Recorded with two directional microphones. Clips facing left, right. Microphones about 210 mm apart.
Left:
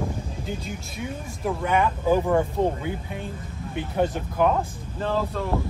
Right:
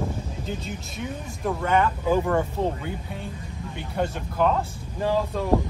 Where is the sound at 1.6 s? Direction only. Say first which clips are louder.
Even; 15° left (ahead or behind).